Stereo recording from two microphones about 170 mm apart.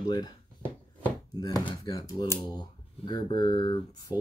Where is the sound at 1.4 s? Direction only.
25° left (ahead or behind).